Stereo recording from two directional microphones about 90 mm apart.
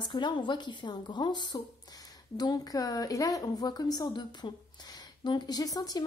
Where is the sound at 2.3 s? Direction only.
45° left (ahead or behind).